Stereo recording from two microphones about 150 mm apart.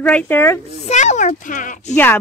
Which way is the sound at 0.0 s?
10° left (ahead or behind).